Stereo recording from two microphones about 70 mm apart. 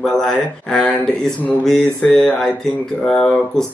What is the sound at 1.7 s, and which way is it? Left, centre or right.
Mantra, centre.